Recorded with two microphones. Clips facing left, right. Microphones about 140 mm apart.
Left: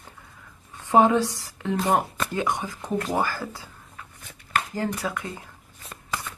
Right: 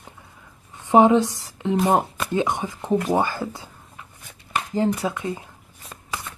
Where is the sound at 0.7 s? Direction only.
20° right (ahead or behind).